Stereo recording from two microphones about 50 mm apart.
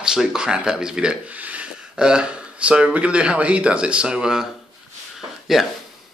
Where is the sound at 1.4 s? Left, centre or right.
Right.